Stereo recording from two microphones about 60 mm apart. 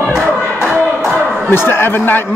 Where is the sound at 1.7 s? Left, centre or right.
Left.